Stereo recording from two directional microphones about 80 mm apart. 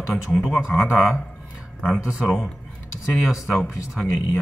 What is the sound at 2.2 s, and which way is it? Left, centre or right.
Speech, centre.